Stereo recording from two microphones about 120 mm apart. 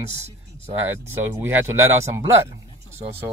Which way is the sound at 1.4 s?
20° right (ahead or behind).